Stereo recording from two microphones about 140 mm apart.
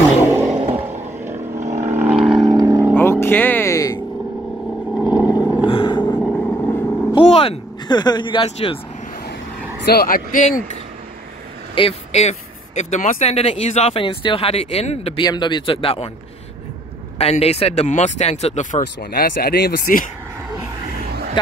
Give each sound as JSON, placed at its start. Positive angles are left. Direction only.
{"t": 0.5, "sound": "vehicle", "side_deg": -50}
{"t": 2.4, "sound": "vehicle", "side_deg": -25}
{"t": 3.0, "sound": "music", "side_deg": 15}
{"t": 4.9, "sound": "vehicle", "side_deg": -5}
{"t": 5.7, "sound": "a sound", "side_deg": 35}
{"t": 6.0, "sound": "vehicle", "side_deg": 5}
{"t": 7.2, "sound": "vehicle", "side_deg": 45}
{"t": 7.9, "sound": "speech", "side_deg": 30}
{"t": 9.9, "sound": "speech", "side_deg": 90}
{"t": 11.7, "sound": "speech", "side_deg": 45}
{"t": 13.9, "sound": "speech", "side_deg": 40}
{"t": 15.2, "sound": "speech", "side_deg": 30}
{"t": 17.2, "sound": "speech", "side_deg": 50}